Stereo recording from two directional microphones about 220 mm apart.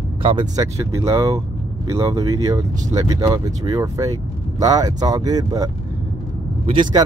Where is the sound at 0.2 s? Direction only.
20° right (ahead or behind).